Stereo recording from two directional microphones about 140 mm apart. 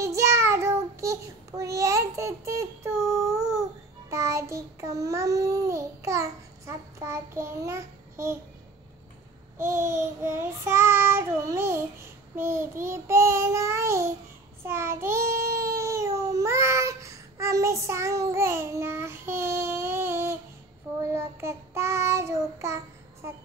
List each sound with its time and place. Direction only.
0.0 s child singing: 20° right (ahead or behind)
9.6 s child singing: 20° right (ahead or behind)